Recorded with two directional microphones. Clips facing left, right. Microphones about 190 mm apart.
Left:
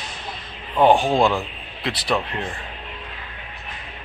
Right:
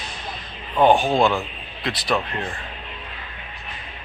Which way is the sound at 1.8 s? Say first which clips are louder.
Even; 30° left (ahead or behind).